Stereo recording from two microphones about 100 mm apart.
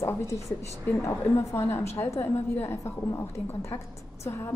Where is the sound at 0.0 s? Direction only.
30° left (ahead or behind).